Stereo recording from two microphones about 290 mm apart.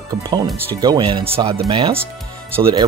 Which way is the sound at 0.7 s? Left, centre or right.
Centre.